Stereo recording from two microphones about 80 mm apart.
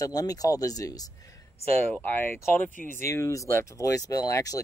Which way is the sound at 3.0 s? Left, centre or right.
Left.